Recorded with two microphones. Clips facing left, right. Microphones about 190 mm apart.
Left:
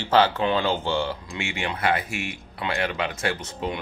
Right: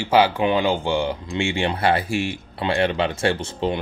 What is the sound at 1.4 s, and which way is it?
Speech, 30° right (ahead or behind).